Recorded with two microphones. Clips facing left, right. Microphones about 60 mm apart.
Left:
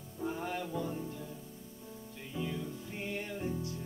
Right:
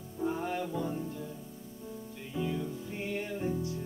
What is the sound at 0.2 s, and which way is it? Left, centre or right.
Music, centre.